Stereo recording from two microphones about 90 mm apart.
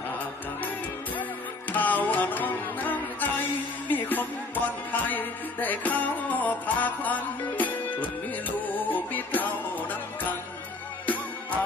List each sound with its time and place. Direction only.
0.6 s music: 20° left (ahead or behind)